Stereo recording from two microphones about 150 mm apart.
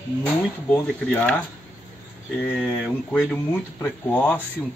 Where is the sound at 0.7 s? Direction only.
10° left (ahead or behind).